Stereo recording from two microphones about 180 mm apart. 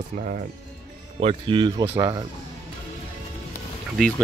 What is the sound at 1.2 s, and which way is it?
Speech, 30° right (ahead or behind).